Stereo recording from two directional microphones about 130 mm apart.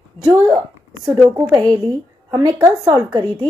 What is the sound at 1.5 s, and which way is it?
A child's voice, 30° right (ahead or behind).